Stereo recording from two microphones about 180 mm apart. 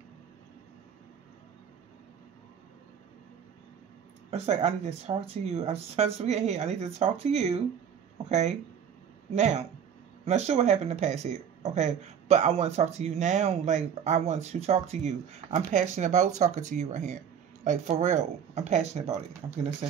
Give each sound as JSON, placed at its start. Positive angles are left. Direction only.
{"t": 4.3, "sound": "speech", "side_deg": -35}